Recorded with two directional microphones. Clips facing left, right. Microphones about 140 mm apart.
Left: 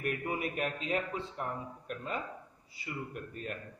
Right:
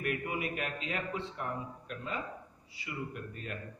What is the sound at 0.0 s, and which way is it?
A man's voice, 40° left (ahead or behind).